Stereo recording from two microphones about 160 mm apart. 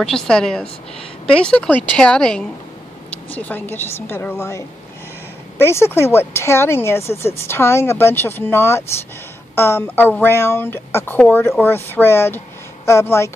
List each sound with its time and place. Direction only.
0.0 s a woman's voice: 5° left (ahead or behind)